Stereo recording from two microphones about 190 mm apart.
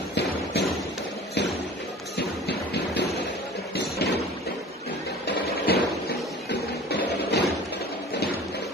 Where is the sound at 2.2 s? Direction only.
60° left (ahead or behind).